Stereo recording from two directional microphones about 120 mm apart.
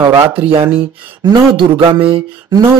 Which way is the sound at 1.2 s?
35° right (ahead or behind).